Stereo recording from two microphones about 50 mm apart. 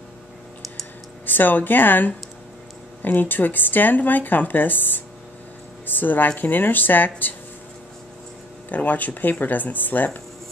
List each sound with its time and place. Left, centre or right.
1.2 s speech: left
8.6 s speech: left